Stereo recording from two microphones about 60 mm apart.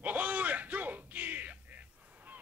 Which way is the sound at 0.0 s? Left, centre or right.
Right.